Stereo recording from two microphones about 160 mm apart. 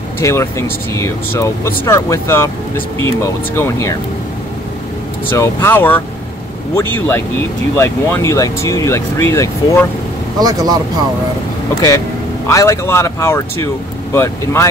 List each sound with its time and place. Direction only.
0.2 s speech: 20° left (ahead or behind)
5.3 s speech: 15° left (ahead or behind)
10.4 s speech: 25° right (ahead or behind)
12.4 s speech: 20° left (ahead or behind)